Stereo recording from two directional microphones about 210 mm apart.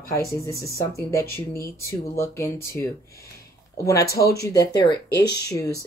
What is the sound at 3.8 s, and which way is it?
Speech, 15° left (ahead or behind).